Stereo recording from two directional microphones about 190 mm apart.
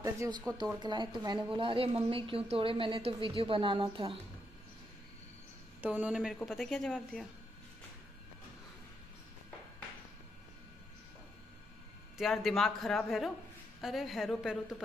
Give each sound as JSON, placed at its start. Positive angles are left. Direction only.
{"t": 0.0, "sound": "a sound", "side_deg": -15}
{"t": 0.7, "sound": "a woman's voice", "side_deg": -25}
{"t": 5.8, "sound": "a woman's voice", "side_deg": -10}
{"t": 12.2, "sound": "a woman's voice", "side_deg": 0}